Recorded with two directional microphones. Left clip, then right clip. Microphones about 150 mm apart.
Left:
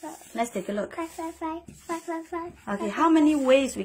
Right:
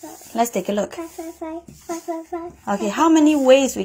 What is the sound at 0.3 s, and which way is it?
Speech, 40° right (ahead or behind).